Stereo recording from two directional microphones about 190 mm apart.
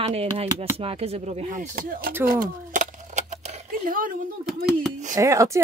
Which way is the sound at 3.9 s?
45° right (ahead or behind).